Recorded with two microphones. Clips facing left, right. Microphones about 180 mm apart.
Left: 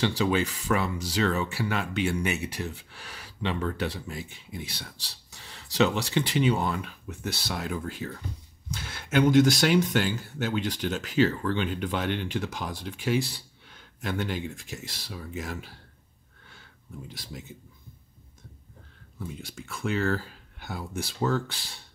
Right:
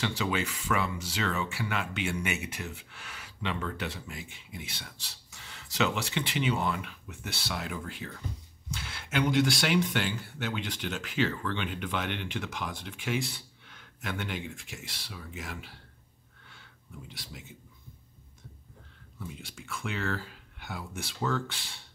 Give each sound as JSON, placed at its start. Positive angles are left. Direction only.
{"t": 0.0, "sound": "speech", "side_deg": 35}
{"t": 17.1, "sound": "speech", "side_deg": 40}
{"t": 19.1, "sound": "speech", "side_deg": 40}